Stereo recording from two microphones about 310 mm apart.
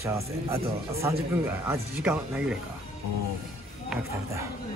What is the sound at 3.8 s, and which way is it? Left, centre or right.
Speech, centre.